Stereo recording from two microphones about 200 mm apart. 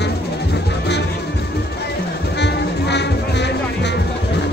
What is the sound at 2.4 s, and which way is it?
Music, 60° left (ahead or behind).